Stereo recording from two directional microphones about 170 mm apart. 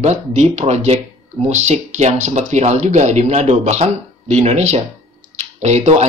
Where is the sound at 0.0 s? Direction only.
40° right (ahead or behind).